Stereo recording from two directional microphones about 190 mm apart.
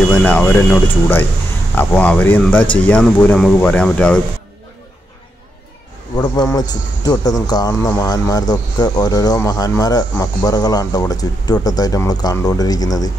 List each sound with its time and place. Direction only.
0.1 s speech: 5° left (ahead or behind)
6.1 s speech: 20° left (ahead or behind)